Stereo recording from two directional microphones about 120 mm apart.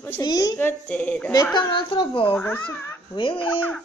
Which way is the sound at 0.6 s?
15° left (ahead or behind).